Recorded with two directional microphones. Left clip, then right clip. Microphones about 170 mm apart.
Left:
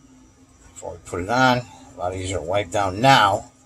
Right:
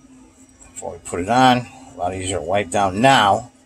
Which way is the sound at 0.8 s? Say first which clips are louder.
Right 3 dB; 20° right (ahead or behind).